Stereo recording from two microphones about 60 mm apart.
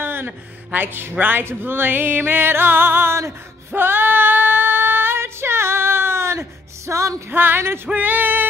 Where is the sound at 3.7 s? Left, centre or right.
Right.